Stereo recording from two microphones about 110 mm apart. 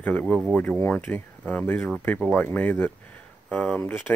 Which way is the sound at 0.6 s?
15° left (ahead or behind).